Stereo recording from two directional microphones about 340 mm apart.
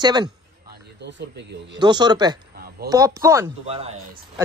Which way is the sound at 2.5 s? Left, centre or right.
Right.